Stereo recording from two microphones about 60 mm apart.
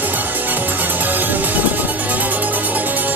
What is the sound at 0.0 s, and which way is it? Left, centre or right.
Music, right.